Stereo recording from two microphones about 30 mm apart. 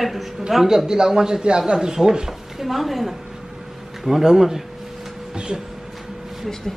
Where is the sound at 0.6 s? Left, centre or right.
Right.